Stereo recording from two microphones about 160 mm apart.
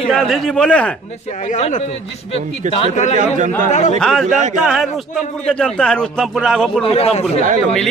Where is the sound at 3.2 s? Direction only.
55° right (ahead or behind).